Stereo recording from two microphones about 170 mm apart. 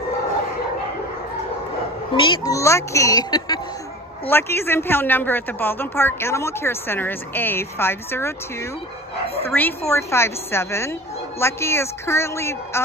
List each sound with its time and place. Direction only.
2.1 s a woman's voice: 30° left (ahead or behind)